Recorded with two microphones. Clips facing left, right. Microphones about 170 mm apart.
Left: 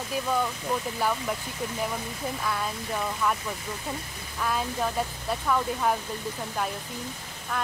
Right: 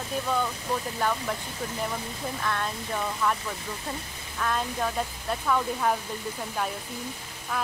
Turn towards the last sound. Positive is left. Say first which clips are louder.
# even
turn(degrees=-5)  # may be behind; listen again after turning